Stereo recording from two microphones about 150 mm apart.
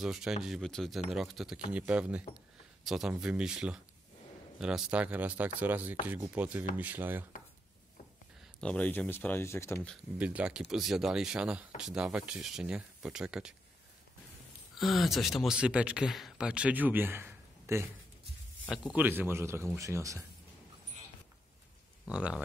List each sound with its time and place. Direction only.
0.0 s speech: 5° right (ahead or behind)
8.5 s speech: 5° left (ahead or behind)
10.1 s speech: 10° right (ahead or behind)
14.8 s speech: centre (ahead or behind)
18.9 s speech: 15° right (ahead or behind)
22.0 s speech: 5° right (ahead or behind)